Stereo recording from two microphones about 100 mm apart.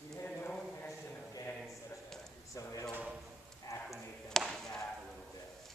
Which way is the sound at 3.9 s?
Centre (ahead or behind).